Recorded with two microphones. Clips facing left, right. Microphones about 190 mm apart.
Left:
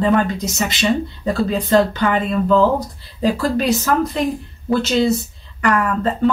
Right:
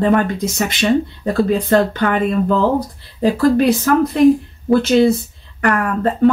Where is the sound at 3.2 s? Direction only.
55° right (ahead or behind).